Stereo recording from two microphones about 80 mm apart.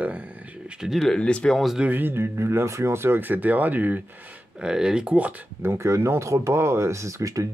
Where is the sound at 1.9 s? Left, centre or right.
Right.